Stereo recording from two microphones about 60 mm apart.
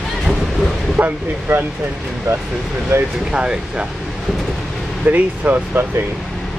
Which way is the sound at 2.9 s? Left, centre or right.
Right.